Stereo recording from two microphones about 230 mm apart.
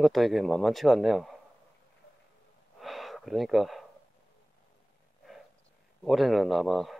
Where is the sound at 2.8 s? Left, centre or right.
Centre.